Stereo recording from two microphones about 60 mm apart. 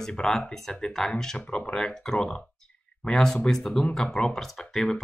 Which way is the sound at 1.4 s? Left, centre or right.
Left.